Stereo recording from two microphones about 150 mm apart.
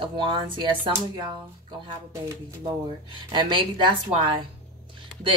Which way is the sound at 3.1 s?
30° right (ahead or behind).